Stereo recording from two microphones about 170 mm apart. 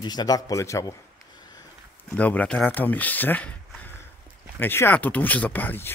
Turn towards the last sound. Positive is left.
turn(degrees=10)  # may be behind; listen again after turning